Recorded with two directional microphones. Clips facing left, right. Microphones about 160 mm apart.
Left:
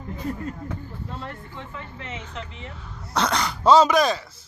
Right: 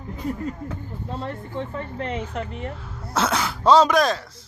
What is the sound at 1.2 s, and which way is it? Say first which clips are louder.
Speech: right 7 dB; 35° right (ahead or behind).